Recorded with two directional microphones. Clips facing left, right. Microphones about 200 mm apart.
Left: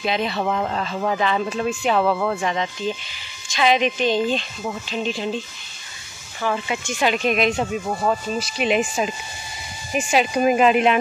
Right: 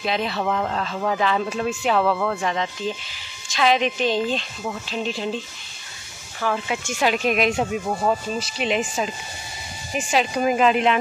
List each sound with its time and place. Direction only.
0.0 s speech: centre (ahead or behind)
6.4 s speech: centre (ahead or behind)
8.4 s speech: 10° left (ahead or behind)